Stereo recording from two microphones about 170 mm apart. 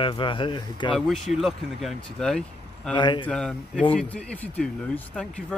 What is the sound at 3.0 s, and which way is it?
Speech, 25° left (ahead or behind).